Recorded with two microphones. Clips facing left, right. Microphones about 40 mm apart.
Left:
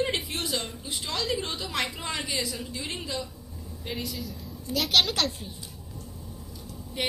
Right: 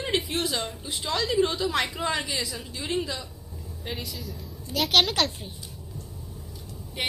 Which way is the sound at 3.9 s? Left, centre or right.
Centre.